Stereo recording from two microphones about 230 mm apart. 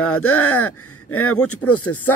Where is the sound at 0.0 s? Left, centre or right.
Left.